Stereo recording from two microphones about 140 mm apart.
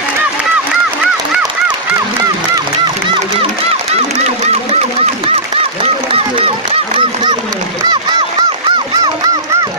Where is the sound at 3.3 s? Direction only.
45° right (ahead or behind).